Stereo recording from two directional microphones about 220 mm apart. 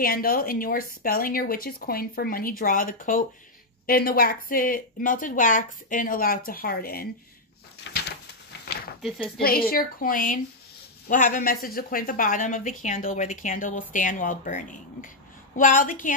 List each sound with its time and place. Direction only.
0.0 s speech: 40° left (ahead or behind)
7.8 s a sound: 55° left (ahead or behind)
9.4 s speech: 45° left (ahead or behind)